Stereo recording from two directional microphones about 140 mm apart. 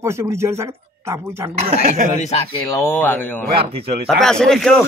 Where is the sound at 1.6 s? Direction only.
50° right (ahead or behind).